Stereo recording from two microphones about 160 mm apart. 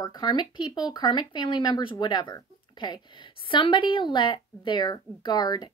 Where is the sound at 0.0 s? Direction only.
25° left (ahead or behind).